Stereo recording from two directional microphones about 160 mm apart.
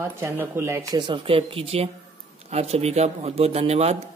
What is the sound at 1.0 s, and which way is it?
Speech, 30° right (ahead or behind).